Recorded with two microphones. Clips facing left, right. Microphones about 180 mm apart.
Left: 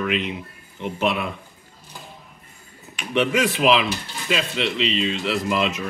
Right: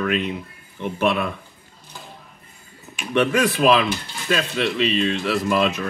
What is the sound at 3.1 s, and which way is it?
Speech, 15° left (ahead or behind).